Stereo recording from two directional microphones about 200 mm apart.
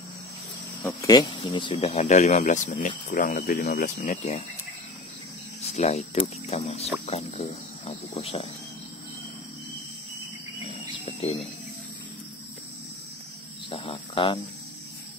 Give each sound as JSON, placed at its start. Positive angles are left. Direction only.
{"t": 0.8, "sound": "speech", "side_deg": 20}
{"t": 4.0, "sound": "speech", "side_deg": 35}
{"t": 5.8, "sound": "speech", "side_deg": 30}
{"t": 10.9, "sound": "bird", "side_deg": 30}
{"t": 13.7, "sound": "a sound", "side_deg": 25}